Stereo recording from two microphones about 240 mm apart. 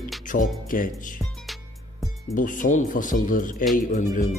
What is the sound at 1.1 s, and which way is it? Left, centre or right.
Music, centre.